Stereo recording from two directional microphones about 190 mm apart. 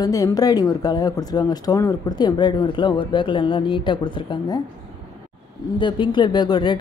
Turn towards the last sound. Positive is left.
turn(degrees=25)  # may be behind; listen again after turning